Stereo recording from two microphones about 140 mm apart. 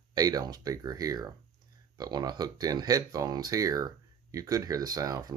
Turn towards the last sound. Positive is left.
turn(degrees=-25)  # may be behind; listen again after turning